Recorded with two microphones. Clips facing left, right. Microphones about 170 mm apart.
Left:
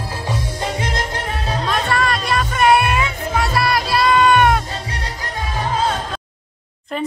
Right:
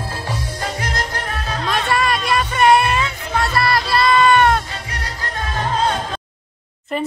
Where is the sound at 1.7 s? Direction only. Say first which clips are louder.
Right 1 dB; 5° right (ahead or behind).